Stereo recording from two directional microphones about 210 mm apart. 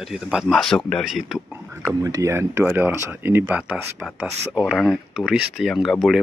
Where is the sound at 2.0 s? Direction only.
15° right (ahead or behind).